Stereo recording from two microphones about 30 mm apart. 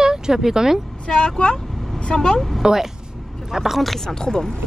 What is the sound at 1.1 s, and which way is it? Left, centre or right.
A woman's voice, left.